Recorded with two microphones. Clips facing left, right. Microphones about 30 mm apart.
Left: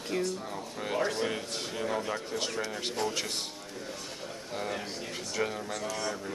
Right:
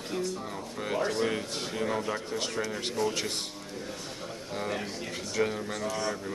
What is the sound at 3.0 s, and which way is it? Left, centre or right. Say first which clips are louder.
Speech: right 3 dB; left.